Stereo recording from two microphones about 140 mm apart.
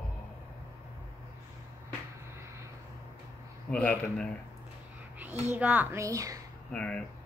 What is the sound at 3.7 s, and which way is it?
Speech, 10° left (ahead or behind).